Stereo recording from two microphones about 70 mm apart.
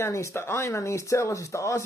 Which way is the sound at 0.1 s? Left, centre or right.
Left.